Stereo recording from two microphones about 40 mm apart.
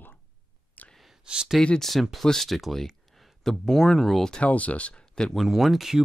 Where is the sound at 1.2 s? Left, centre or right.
Right.